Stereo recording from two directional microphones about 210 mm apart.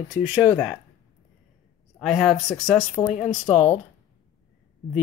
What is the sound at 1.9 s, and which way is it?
Speech, centre (ahead or behind).